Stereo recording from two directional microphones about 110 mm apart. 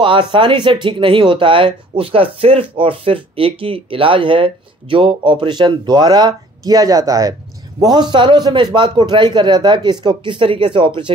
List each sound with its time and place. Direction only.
0.0 s speech: 50° right (ahead or behind)